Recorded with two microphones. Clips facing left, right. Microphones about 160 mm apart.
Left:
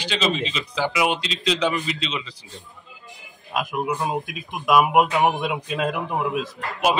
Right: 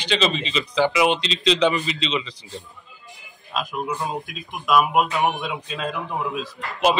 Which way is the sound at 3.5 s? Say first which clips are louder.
Left 2 dB; 15° left (ahead or behind).